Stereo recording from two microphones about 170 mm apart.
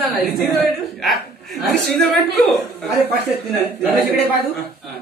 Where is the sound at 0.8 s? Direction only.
Centre (ahead or behind).